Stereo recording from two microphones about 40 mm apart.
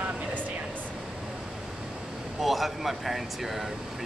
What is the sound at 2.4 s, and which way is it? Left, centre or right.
Speech, centre.